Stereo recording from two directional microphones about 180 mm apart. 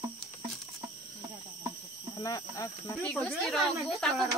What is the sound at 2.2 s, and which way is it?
Speech, 20° left (ahead or behind).